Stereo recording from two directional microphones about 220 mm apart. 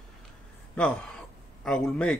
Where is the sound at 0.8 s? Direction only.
5° left (ahead or behind).